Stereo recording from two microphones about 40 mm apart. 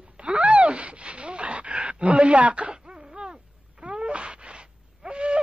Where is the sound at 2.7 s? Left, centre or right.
Centre.